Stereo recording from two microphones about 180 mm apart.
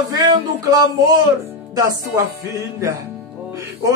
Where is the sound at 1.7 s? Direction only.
20° right (ahead or behind).